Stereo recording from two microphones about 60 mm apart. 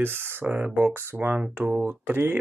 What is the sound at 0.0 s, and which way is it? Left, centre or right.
Speech, right.